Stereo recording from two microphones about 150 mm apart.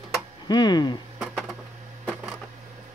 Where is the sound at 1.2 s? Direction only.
Centre (ahead or behind).